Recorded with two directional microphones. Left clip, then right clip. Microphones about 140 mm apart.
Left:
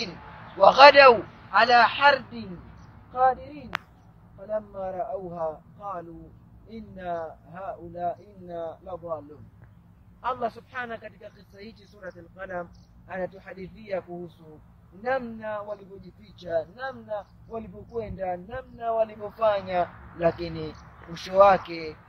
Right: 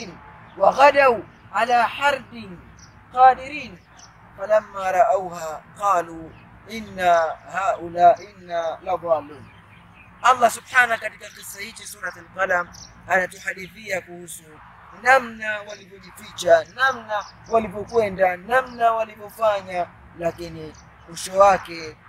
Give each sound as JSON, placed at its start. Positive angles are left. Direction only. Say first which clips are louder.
{"t": 0.6, "sound": "speech", "louder": "left 1 dB", "side_deg": -15}
{"t": 10.2, "sound": "speech", "louder": "right 13 dB", "side_deg": 10}
{"t": 12.0, "sound": "speech", "louder": "right 14 dB", "side_deg": -20}